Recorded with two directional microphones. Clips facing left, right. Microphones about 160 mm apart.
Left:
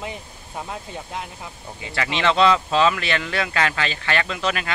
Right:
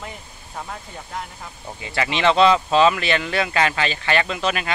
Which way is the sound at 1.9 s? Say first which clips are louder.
Right 2 dB; 20° right (ahead or behind).